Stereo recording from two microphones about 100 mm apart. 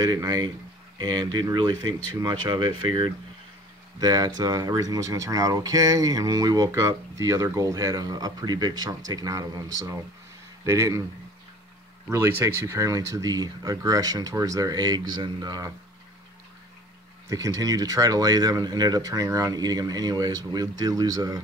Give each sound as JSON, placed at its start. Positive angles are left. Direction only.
{"t": 0.0, "sound": "speech", "side_deg": -40}
{"t": 12.1, "sound": "speech", "side_deg": -25}
{"t": 17.3, "sound": "speech", "side_deg": -35}